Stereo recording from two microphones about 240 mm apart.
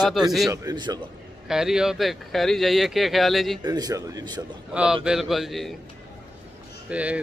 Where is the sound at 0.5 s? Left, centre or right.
Centre.